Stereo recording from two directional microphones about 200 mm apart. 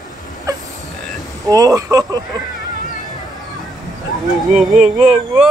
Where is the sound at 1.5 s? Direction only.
15° right (ahead or behind).